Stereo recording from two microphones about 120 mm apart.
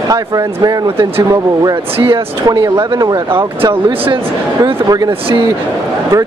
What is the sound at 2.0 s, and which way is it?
Speech, 30° right (ahead or behind).